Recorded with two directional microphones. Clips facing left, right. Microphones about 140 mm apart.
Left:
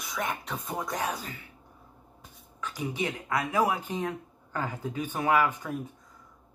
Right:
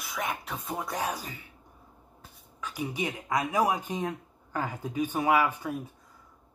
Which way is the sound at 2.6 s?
10° right (ahead or behind).